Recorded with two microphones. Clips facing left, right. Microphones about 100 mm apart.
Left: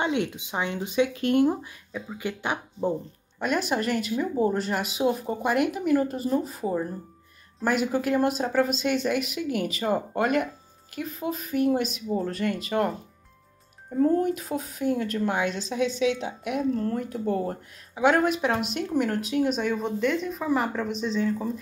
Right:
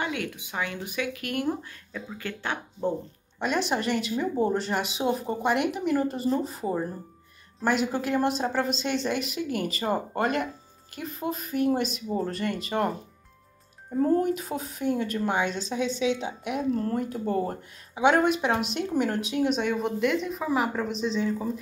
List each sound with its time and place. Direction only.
0.0 s speech: 25° left (ahead or behind)
1.9 s speech: 10° left (ahead or behind)
3.3 s speech: centre (ahead or behind)